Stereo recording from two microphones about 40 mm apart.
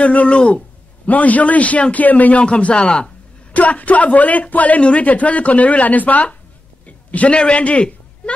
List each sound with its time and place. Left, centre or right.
0.0 s a man's voice: left
0.4 s speech: left
1.0 s a man's voice: left
2.4 s speech: left
3.5 s a man's voice: left